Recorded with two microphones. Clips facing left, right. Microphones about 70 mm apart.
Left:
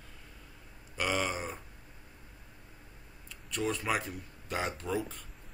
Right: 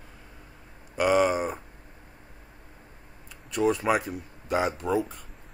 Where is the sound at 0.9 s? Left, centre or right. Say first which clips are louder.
Right 10 dB; centre.